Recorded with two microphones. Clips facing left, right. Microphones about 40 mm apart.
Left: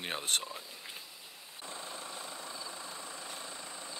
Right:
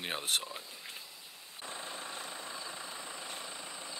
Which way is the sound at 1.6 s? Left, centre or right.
Right.